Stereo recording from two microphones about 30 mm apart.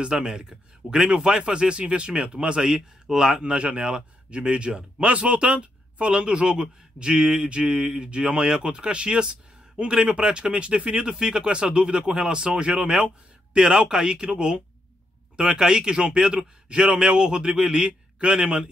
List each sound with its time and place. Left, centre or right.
0.1 s a man's voice: right
2.6 s speech: centre
3.4 s a man's voice: right
5.0 s a man's voice: right
13.7 s a man's voice: right
15.3 s a man's voice: right
16.2 s speech: centre
16.6 s a man's voice: right